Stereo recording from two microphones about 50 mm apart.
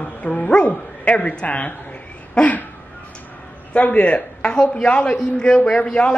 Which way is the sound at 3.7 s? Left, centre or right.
Left.